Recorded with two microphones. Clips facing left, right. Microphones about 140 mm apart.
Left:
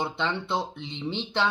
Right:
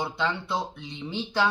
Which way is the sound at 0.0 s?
25° left (ahead or behind).